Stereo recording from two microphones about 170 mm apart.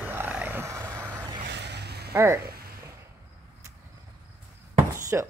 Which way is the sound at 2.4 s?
65° right (ahead or behind).